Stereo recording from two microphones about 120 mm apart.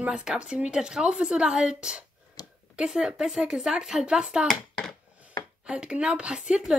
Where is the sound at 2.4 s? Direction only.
30° left (ahead or behind).